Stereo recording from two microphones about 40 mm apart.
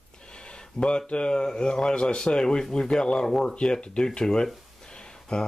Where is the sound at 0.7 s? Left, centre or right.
Left.